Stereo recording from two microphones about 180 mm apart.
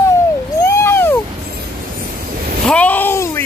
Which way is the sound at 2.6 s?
10° left (ahead or behind).